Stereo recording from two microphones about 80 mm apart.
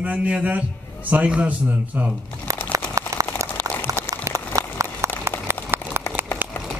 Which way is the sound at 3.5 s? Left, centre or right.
Left.